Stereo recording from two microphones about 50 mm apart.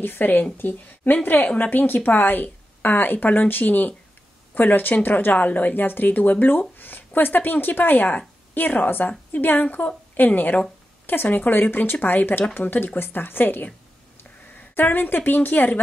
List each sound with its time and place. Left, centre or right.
0.0 s a woman's voice: left
14.8 s a woman's voice: left